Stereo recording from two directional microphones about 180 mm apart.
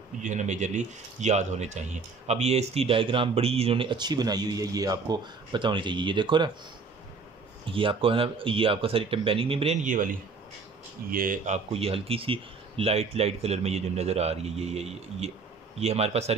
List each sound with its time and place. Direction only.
0.2 s speech: 40° right (ahead or behind); by 6.5 s 25° right (ahead or behind)
7.7 s speech: 30° right (ahead or behind)
9.8 s a man's voice: 50° right (ahead or behind)